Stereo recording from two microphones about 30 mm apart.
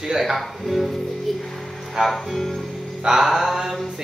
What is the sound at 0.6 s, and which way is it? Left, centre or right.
Music, centre.